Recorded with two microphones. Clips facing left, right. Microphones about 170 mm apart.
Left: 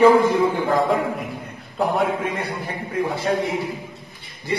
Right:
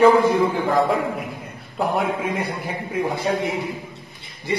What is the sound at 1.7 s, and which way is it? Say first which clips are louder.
Speech: left 1 dB; centre (ahead or behind).